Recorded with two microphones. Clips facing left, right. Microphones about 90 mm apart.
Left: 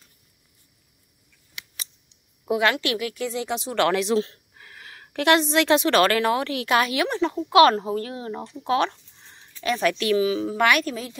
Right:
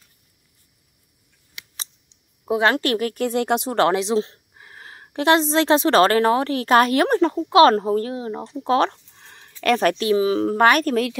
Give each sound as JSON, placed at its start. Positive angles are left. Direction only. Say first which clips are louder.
{"t": 2.4, "sound": "a woman's voice", "louder": "right 3 dB", "side_deg": -30}
{"t": 2.7, "sound": "a woman's voice", "louder": "right 5 dB", "side_deg": -45}
{"t": 3.7, "sound": "a woman's voice", "louder": "even", "side_deg": -30}
{"t": 7.3, "sound": "speech", "louder": "right 1 dB", "side_deg": -30}
{"t": 9.1, "sound": "a sound", "louder": "right 4 dB", "side_deg": -60}
{"t": 9.6, "sound": "speech", "louder": "right 5 dB", "side_deg": -55}
{"t": 9.9, "sound": "speech", "louder": "right 2 dB", "side_deg": -30}
{"t": 10.3, "sound": "a woman's voice", "louder": "right 4 dB", "side_deg": -50}